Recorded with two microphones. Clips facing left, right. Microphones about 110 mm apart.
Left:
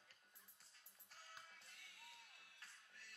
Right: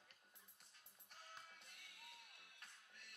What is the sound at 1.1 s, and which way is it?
Music, 20° right (ahead or behind).